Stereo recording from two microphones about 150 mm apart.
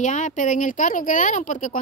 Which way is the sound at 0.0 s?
55° left (ahead or behind).